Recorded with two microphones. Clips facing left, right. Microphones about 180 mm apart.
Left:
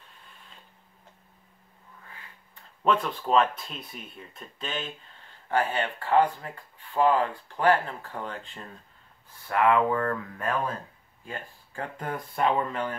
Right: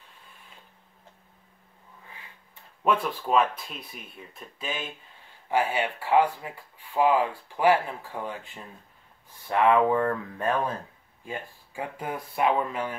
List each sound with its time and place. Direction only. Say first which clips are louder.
2.8 s speech: even; 10° right (ahead or behind)
9.5 s speech: right 2 dB; 20° right (ahead or behind)
11.2 s speech: right 3 dB; 10° right (ahead or behind)